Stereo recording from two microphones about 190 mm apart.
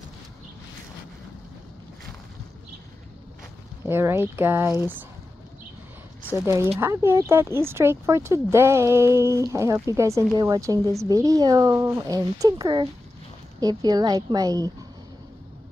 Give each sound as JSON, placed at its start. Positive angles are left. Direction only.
{"t": 3.8, "sound": "speech", "side_deg": -15}
{"t": 6.4, "sound": "a woman's voice", "side_deg": -15}